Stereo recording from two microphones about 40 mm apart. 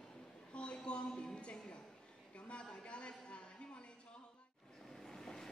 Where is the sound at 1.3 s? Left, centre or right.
Left.